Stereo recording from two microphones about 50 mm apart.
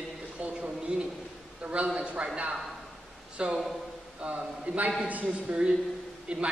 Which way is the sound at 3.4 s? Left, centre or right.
Centre.